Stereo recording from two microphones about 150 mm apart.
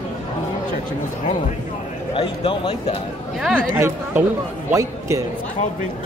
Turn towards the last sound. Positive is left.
turn(degrees=-20)  # may be behind; listen again after turning